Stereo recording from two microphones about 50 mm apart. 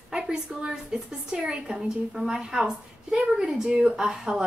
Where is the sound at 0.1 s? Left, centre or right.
Centre.